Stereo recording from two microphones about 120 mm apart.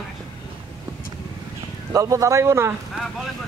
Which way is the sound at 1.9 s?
25° right (ahead or behind).